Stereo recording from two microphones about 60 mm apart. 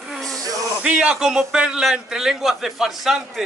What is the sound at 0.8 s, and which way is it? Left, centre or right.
A man's voice, centre.